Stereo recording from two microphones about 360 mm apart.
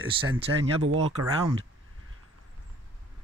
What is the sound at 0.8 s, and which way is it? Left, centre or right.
Speech, right.